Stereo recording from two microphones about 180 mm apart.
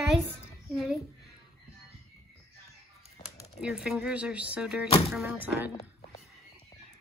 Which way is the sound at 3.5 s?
5° right (ahead or behind).